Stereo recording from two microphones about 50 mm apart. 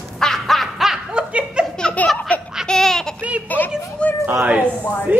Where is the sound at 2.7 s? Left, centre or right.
Centre.